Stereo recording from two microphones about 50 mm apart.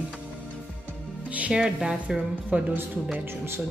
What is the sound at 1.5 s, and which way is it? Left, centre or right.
Speech, centre.